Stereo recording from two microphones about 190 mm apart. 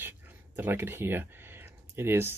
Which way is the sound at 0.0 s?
10° right (ahead or behind).